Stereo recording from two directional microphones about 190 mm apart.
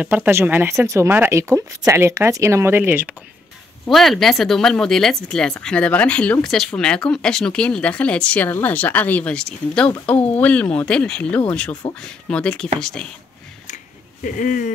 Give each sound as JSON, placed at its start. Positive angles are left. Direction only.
{"t": 0.0, "sound": "speech", "side_deg": -10}
{"t": 3.8, "sound": "speech", "side_deg": 0}
{"t": 14.2, "sound": "speech", "side_deg": 45}